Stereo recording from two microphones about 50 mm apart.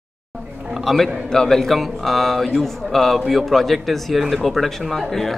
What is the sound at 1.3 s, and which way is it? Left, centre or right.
A man's voice, centre.